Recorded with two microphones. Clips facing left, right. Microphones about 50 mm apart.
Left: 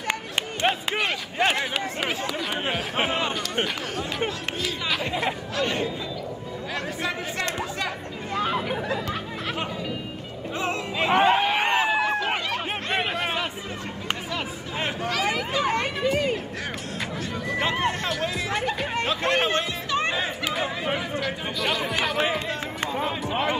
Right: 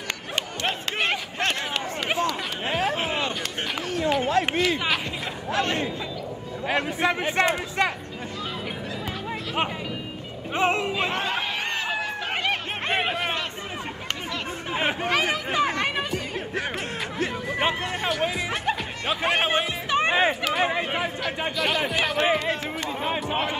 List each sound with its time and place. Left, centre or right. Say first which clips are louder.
4.3 s speech: right 8 dB; right
8.4 s chatter: left 9 dB; left
10.5 s speech: right 5 dB; right
11.1 s chatter: left 7 dB; left
12.9 s a sound: right 1 dB; centre
14.9 s speech: right 2 dB; right
15.5 s a sound: right 1 dB; right
18.7 s speech: left 1 dB; centre
21.2 s speech: right 1 dB; centre